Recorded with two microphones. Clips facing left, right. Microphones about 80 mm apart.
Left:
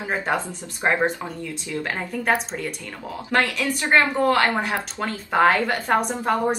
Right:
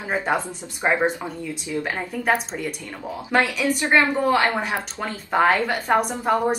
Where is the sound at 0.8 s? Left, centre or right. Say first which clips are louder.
Even; centre.